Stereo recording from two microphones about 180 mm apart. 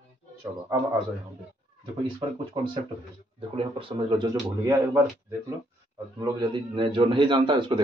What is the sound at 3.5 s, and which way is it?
A man's voice, 30° right (ahead or behind).